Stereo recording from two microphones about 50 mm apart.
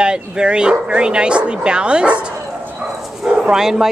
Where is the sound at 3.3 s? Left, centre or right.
Centre.